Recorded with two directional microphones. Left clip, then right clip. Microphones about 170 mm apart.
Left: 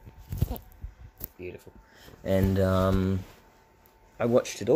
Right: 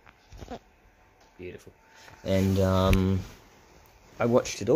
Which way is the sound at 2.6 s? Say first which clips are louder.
Right 1 dB; 10° left (ahead or behind).